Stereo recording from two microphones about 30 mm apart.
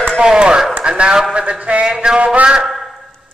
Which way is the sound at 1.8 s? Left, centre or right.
Right.